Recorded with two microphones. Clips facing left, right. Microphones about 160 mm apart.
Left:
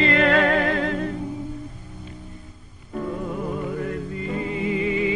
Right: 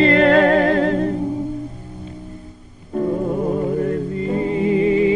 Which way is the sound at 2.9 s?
35° right (ahead or behind).